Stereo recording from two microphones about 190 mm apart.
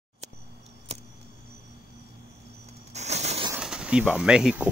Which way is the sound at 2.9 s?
35° right (ahead or behind).